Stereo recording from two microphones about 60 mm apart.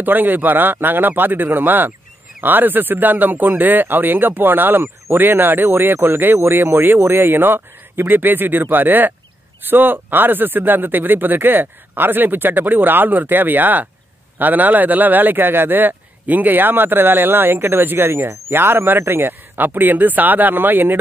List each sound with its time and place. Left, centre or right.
0.0 s speech: right